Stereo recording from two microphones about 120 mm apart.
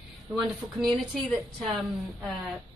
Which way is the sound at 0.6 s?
5° left (ahead or behind).